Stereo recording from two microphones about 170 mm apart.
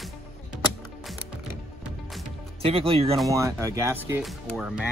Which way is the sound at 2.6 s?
35° right (ahead or behind).